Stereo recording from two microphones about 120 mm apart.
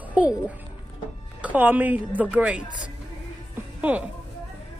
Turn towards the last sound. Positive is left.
turn(degrees=-10)  # may be behind; listen again after turning